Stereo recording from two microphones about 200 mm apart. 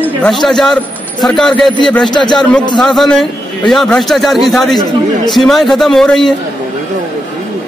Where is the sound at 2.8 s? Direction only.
Centre (ahead or behind).